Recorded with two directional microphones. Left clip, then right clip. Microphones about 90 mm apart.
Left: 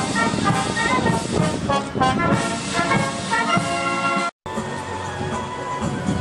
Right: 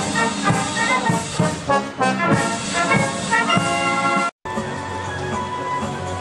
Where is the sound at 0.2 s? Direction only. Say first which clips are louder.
Right 1 dB; 30° right (ahead or behind).